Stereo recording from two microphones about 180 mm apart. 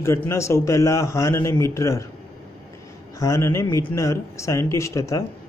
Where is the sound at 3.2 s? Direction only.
15° left (ahead or behind).